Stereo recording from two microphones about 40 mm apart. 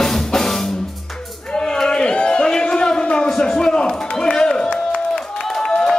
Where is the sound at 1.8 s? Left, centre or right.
Left.